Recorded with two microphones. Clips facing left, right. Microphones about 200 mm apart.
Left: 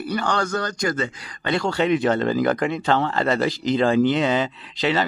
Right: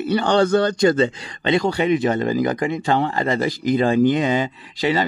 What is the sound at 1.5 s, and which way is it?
Speech, 15° right (ahead or behind).